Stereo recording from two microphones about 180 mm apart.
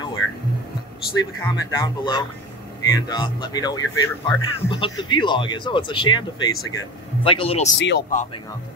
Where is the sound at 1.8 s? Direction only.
25° left (ahead or behind).